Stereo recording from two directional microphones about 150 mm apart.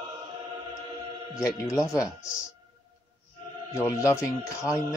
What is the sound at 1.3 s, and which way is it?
Speech, 20° left (ahead or behind).